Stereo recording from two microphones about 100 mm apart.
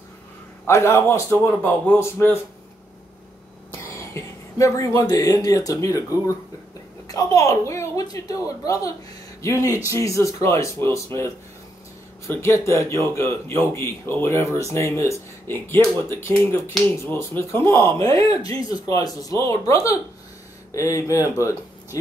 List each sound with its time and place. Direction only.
0.7 s speech: 25° left (ahead or behind)
3.8 s a woman's voice: 30° left (ahead or behind)